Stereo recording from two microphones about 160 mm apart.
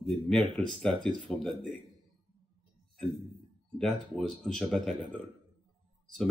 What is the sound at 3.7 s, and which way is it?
Speech, 5° left (ahead or behind).